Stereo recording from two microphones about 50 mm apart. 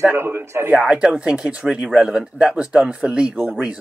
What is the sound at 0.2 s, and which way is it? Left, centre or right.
Speech, right.